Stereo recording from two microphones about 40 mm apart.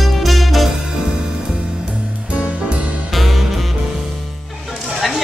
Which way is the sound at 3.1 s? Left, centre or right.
Centre.